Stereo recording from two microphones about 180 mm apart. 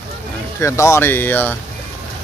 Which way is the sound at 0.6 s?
15° left (ahead or behind).